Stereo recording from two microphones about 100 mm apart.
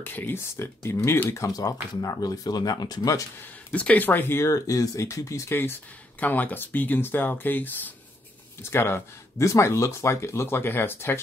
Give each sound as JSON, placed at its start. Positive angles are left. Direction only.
{"t": 0.0, "sound": "speech", "side_deg": 20}
{"t": 3.7, "sound": "speech", "side_deg": 15}